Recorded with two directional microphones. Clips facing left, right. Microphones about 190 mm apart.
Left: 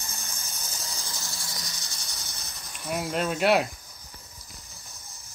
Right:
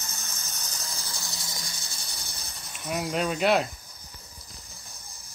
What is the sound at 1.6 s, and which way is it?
Snake, 30° right (ahead or behind).